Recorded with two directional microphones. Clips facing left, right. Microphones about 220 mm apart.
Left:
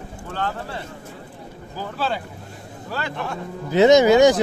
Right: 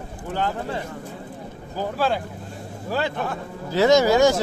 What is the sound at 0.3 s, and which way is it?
Speech, 15° right (ahead or behind).